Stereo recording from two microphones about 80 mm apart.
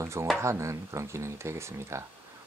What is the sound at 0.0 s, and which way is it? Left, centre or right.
Speech, right.